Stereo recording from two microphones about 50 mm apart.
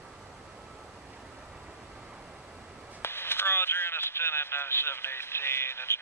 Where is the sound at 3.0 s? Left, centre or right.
Left.